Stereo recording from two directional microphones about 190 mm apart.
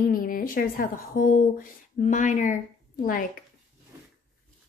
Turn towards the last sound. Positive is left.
turn(degrees=45)  # may be behind; listen again after turning